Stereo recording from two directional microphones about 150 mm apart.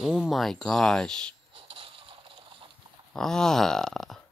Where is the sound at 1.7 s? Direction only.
35° right (ahead or behind).